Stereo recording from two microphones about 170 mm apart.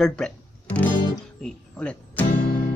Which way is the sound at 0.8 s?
25° left (ahead or behind).